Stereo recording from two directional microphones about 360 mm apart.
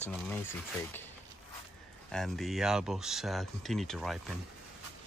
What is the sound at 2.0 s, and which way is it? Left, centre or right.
Speech, centre.